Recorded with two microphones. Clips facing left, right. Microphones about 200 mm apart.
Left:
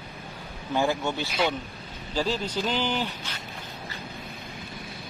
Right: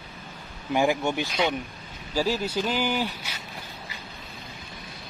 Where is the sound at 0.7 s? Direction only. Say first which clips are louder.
Right 2 dB; 15° right (ahead or behind).